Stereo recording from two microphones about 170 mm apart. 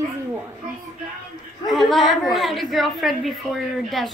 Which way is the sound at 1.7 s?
Centre (ahead or behind).